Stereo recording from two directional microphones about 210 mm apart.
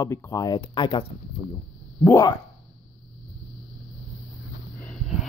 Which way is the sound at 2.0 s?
15° left (ahead or behind).